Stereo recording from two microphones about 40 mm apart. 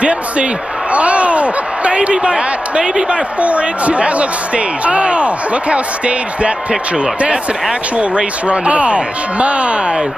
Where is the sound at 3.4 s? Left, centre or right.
Right.